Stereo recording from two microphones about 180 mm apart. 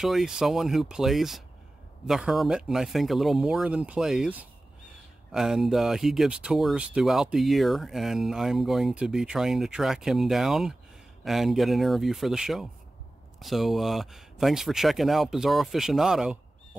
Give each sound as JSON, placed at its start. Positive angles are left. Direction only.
{"t": 0.0, "sound": "speech", "side_deg": 0}